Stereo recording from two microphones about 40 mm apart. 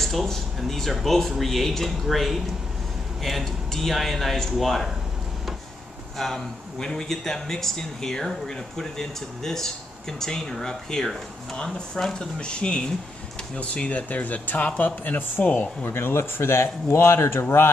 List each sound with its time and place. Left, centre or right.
0.0 s speech: centre
6.1 s speech: centre
12.4 s speech: left
15.8 s speech: left